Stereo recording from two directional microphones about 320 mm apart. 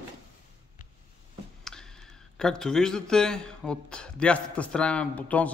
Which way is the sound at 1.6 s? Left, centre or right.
Centre.